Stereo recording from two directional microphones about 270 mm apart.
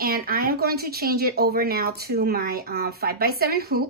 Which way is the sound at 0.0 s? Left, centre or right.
Right.